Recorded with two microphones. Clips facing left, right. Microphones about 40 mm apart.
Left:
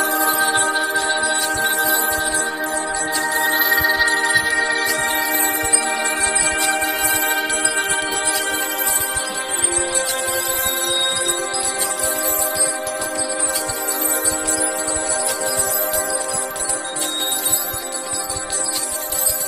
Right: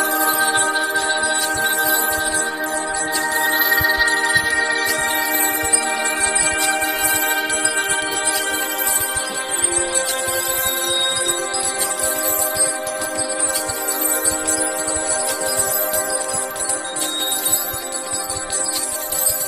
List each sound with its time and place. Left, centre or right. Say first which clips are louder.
0.7 s music: even; centre
3.3 s music: even; left
3.5 s music: even; centre
5.9 s music: even; centre